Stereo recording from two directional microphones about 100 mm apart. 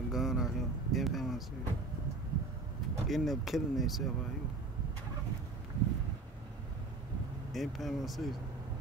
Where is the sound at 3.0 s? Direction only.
Centre (ahead or behind).